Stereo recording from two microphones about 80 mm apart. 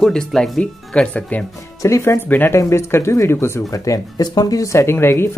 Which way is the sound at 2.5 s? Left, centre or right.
Left.